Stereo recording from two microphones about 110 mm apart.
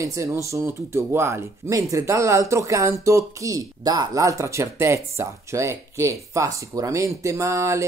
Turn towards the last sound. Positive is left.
turn(degrees=-25)  # may be behind; listen again after turning